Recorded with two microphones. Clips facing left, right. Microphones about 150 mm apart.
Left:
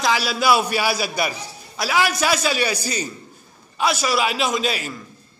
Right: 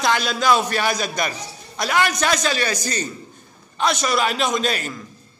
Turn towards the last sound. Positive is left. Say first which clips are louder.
# right 1 dB
turn(degrees=5)  # may be behind; listen again after turning